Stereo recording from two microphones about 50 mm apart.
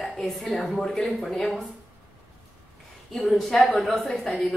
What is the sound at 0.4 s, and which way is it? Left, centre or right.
A woman's voice, centre.